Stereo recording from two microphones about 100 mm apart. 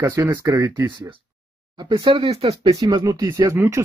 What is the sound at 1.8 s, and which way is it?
Speech, 50° right (ahead or behind).